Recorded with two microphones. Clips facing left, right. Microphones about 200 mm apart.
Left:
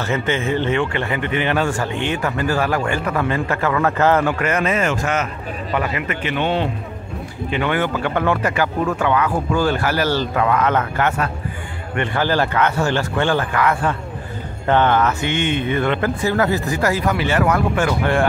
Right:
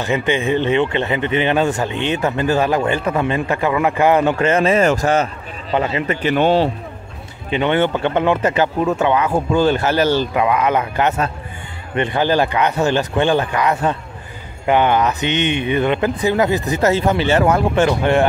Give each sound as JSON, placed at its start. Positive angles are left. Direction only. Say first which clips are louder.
{"t": 0.0, "sound": "a man's voice", "louder": "right 3 dB", "side_deg": -15}
{"t": 7.5, "sound": "a man's voice", "louder": "right 4 dB", "side_deg": -25}